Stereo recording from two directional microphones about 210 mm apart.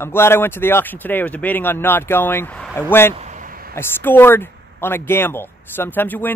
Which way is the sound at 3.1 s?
35° right (ahead or behind).